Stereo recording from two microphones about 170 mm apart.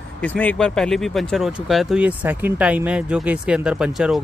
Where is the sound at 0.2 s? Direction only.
10° left (ahead or behind).